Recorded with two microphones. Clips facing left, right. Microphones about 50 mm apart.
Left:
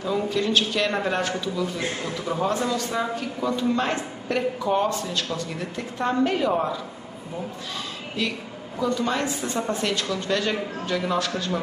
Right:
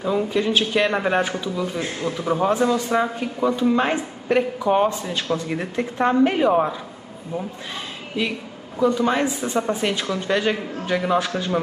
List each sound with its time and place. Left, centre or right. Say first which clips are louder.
0.0 s a man's voice: right 3 dB; centre
8.2 s a man's voice: right 3 dB; centre